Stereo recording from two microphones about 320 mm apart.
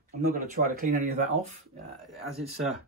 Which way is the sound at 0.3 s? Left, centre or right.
Right.